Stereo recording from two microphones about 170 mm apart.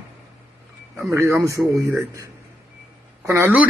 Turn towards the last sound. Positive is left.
turn(degrees=-10)  # may be behind; listen again after turning